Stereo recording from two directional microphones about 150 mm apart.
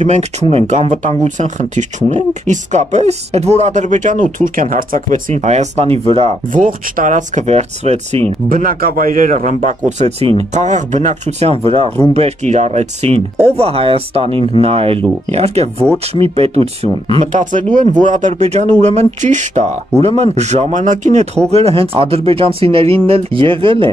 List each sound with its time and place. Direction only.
0.0 s speech: 50° right (ahead or behind)
6.5 s speech: 60° right (ahead or behind)
8.5 s a man's voice: 70° right (ahead or behind)
21.5 s speech: 45° right (ahead or behind)